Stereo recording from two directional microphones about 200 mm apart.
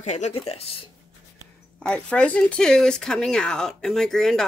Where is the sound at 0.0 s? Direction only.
35° left (ahead or behind).